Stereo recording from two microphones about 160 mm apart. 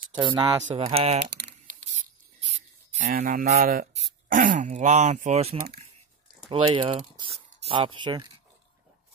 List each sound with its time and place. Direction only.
0.1 s speech: 30° right (ahead or behind)
1.2 s typing: 90° right
2.4 s a sound: 45° right (ahead or behind); by 3.9 s 65° right (ahead or behind)
3.9 s throat clearing: 40° right (ahead or behind)
4.4 s speech: 50° right (ahead or behind); by 8.3 s 30° right (ahead or behind)